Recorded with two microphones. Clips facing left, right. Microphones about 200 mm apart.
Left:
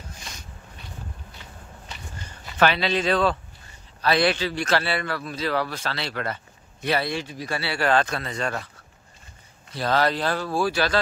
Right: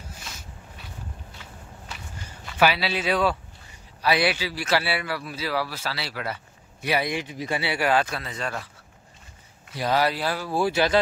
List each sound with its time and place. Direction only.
2.2 s a man's voice: 5° right (ahead or behind)
9.7 s a man's voice: 10° right (ahead or behind)
10.5 s speech: 20° right (ahead or behind)